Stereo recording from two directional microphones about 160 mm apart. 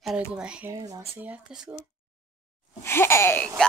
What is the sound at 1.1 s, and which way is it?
Speech, 10° right (ahead or behind).